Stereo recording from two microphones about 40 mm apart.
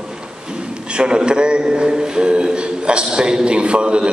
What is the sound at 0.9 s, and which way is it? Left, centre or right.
A man's voice, right.